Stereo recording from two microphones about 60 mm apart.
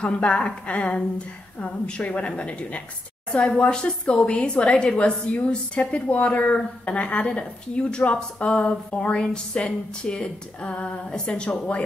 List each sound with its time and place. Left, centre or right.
0.0 s a woman's voice: centre